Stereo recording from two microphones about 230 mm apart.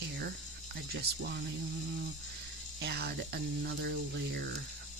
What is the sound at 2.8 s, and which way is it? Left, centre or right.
Speech, right.